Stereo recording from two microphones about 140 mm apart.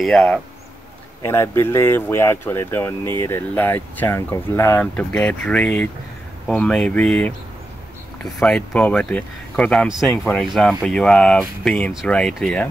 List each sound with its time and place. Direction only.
0.0 s speech: 5° left (ahead or behind)
1.2 s speech: 20° left (ahead or behind)